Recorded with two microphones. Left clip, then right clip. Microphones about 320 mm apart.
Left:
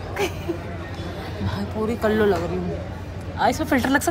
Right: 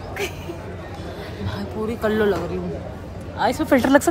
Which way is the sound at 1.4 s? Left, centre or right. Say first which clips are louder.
Left 1 dB; centre.